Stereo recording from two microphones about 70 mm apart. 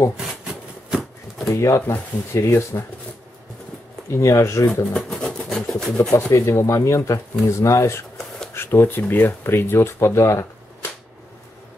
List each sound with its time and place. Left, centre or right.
0.8 s a sound: centre
1.5 s speech: left
4.1 s speech: left
4.9 s rub: centre
6.1 s speech: left
8.5 s speech: left